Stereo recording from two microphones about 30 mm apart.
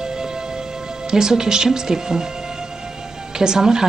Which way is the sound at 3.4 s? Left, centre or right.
Right.